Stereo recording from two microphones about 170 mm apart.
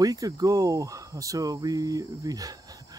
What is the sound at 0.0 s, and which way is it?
Speech, 20° right (ahead or behind).